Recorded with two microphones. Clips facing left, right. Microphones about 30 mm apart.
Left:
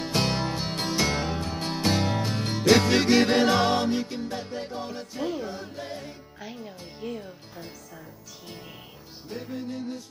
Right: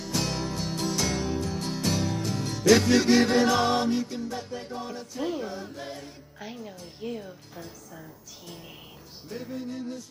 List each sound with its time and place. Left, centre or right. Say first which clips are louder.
0.0 s music: left 4 dB; left
5.2 s music: even; centre
7.0 s speech: even; centre